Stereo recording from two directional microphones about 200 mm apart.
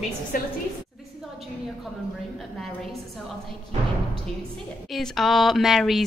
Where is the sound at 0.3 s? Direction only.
45° left (ahead or behind).